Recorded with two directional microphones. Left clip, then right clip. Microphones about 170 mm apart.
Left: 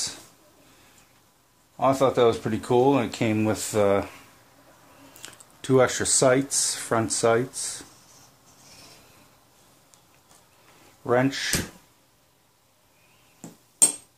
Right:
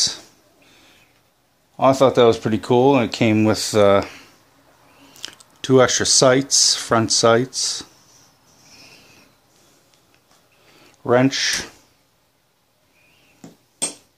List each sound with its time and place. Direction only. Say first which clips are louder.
1.8 s speech: right 6 dB; 50° right (ahead or behind)
5.2 s speech: right 9 dB; 40° right (ahead or behind)
11.1 s speech: right 6 dB; 50° right (ahead or behind)